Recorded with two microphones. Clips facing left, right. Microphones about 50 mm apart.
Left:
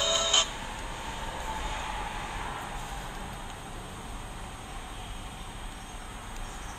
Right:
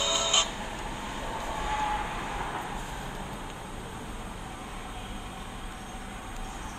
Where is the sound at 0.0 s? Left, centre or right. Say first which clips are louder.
Even; centre.